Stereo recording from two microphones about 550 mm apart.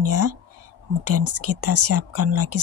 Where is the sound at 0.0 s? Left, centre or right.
Right.